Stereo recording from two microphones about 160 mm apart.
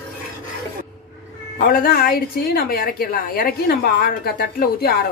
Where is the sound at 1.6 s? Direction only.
60° left (ahead or behind).